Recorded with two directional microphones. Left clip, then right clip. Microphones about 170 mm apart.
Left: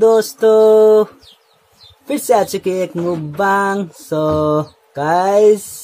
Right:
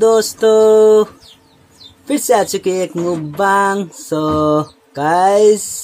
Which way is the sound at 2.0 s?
Centre (ahead or behind).